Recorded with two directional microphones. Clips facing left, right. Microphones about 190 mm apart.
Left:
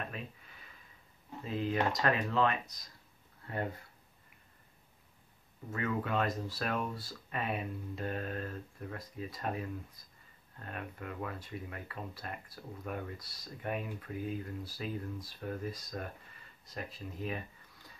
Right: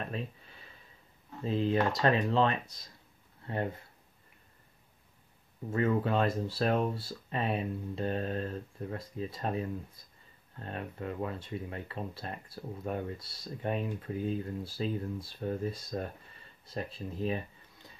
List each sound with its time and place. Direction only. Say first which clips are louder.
0.1 s a sound: right 6 dB; 30° right (ahead or behind)
1.4 s speech: right 4 dB; 30° right (ahead or behind)
5.7 s speech: right 6 dB; 30° right (ahead or behind)